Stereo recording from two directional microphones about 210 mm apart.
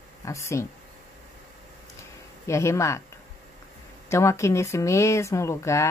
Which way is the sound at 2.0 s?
15° left (ahead or behind).